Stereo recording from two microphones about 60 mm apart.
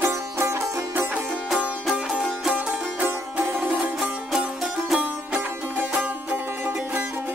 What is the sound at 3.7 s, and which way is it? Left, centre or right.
Music, centre.